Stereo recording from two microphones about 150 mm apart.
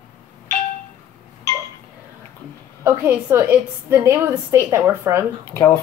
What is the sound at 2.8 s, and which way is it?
A woman's voice, 15° right (ahead or behind).